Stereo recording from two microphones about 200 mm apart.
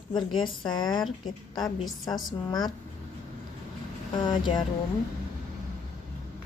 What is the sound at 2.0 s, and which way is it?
Speech, 20° left (ahead or behind).